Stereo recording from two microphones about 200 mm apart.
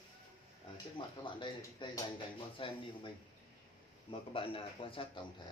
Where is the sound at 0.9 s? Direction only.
25° left (ahead or behind).